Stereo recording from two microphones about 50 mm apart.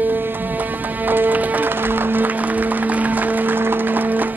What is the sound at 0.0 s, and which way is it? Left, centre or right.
Music, right.